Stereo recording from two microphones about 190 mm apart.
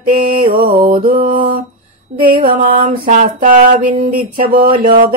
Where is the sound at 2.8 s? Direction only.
40° right (ahead or behind).